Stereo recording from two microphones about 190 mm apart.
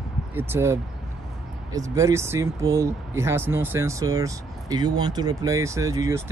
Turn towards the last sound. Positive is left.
turn(degrees=-15)  # may be behind; listen again after turning